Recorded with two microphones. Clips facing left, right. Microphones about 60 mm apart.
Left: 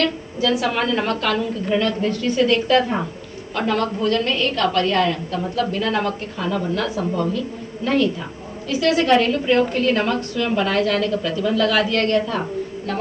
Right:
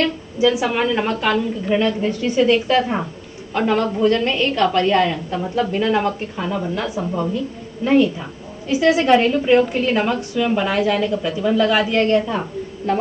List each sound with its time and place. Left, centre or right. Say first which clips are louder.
0.0 s a woman's voice: right 3 dB; centre